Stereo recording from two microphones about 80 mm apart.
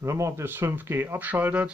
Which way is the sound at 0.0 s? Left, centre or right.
Right.